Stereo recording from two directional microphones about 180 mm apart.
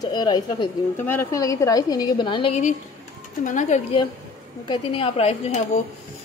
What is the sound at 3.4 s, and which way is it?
Speech, 45° left (ahead or behind).